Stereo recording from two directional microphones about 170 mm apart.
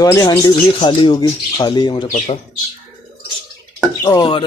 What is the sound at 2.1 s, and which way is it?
Speech, 40° left (ahead or behind).